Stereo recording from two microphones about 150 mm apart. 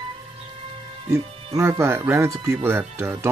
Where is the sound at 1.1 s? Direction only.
20° right (ahead or behind).